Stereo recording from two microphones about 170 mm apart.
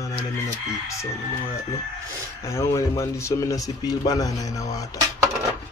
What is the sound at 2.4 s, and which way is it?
Speech, 15° left (ahead or behind).